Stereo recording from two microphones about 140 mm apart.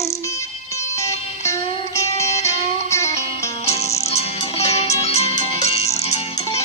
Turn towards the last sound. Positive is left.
turn(degrees=50)  # may be behind; listen again after turning